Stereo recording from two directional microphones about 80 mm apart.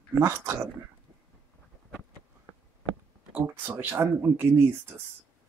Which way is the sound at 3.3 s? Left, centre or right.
Right.